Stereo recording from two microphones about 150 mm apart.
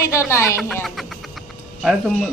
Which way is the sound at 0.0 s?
20° left (ahead or behind).